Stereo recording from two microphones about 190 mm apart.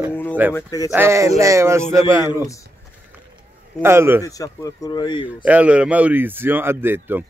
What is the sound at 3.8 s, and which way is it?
Speech, 15° right (ahead or behind).